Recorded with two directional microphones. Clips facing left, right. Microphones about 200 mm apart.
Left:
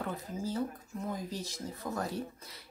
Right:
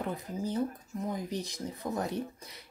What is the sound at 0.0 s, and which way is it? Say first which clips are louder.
Speech: right 2 dB; 15° right (ahead or behind).